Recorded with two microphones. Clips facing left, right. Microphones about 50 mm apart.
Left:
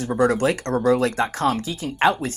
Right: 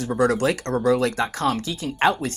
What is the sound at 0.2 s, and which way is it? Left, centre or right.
Speech, left.